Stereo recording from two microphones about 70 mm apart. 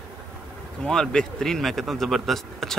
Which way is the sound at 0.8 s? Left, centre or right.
Centre.